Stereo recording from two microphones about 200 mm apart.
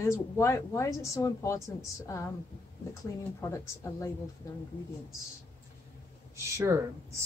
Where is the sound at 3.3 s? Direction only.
15° left (ahead or behind).